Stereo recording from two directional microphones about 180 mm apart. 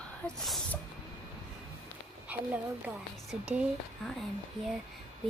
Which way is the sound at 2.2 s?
10° right (ahead or behind).